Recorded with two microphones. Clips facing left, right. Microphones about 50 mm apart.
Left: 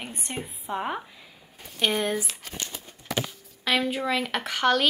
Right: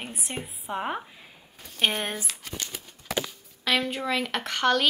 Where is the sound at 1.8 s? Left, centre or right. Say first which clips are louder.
Left 1 dB; right.